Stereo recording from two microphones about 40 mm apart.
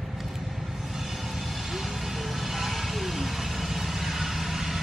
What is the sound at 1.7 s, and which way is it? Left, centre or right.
Vehicle, centre.